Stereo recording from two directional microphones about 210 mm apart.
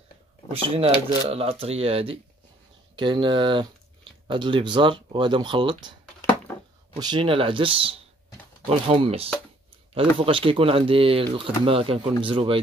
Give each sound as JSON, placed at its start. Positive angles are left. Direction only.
{"t": 0.5, "sound": "speech", "side_deg": -25}
{"t": 7.0, "sound": "speech", "side_deg": -20}